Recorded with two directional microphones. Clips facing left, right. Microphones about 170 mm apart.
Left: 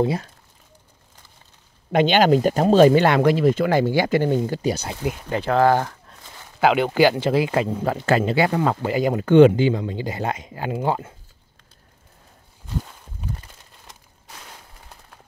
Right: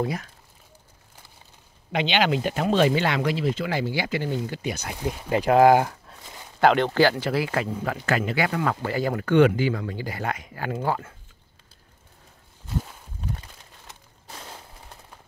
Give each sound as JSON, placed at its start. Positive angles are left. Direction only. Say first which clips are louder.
{"t": 0.0, "sound": "speech", "louder": "left 6 dB", "side_deg": 30}
{"t": 1.9, "sound": "speech", "louder": "left 7 dB", "side_deg": 45}
{"t": 5.2, "sound": "speech", "louder": "right 2 dB", "side_deg": -10}
{"t": 6.6, "sound": "speech", "louder": "left 2 dB", "side_deg": 5}